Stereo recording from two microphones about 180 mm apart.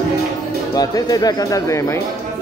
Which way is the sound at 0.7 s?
20° left (ahead or behind).